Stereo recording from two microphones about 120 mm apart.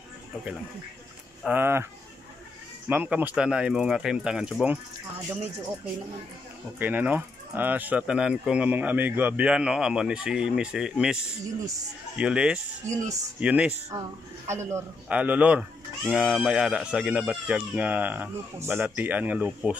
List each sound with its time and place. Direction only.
1.5 s speech: 20° right (ahead or behind)
2.9 s speech: 15° right (ahead or behind)
6.8 s speech: 15° right (ahead or behind)
12.2 s speech: 5° right (ahead or behind)
12.8 s speech: 25° right (ahead or behind)
13.4 s speech: 10° right (ahead or behind)
14.5 s speech: 25° right (ahead or behind)
15.0 s speech: 10° right (ahead or behind)